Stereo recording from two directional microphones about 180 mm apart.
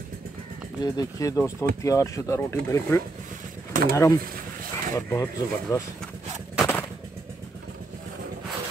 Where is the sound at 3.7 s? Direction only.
50° right (ahead or behind).